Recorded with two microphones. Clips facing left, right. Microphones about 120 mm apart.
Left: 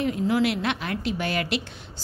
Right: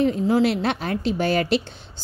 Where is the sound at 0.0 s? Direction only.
30° right (ahead or behind).